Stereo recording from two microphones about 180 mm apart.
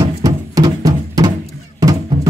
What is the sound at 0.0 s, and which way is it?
Music, 20° right (ahead or behind).